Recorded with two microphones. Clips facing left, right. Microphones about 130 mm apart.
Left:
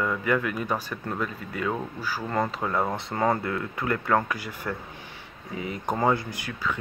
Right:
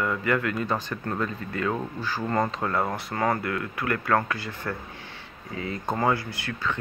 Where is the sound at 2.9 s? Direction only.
20° left (ahead or behind).